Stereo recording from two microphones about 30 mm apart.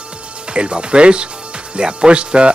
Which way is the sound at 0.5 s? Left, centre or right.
Right.